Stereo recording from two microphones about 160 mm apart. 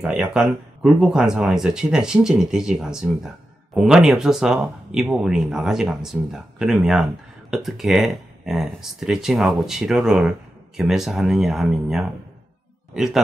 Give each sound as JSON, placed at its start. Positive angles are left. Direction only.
{"t": 0.0, "sound": "speech", "side_deg": -5}